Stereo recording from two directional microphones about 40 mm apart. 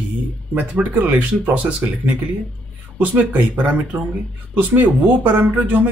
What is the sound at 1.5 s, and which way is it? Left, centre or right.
Speech, right.